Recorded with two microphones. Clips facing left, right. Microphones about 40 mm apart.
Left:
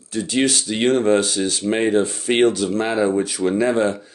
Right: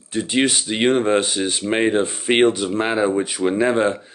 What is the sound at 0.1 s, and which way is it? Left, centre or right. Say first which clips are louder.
Speech: even; right.